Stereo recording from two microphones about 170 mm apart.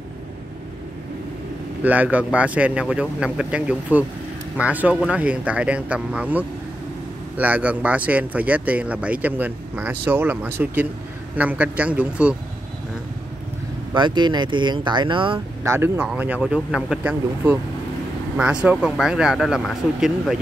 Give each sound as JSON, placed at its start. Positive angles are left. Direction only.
{"t": 1.8, "sound": "speech", "side_deg": -10}
{"t": 13.9, "sound": "speech", "side_deg": -25}
{"t": 15.6, "sound": "speech", "side_deg": -15}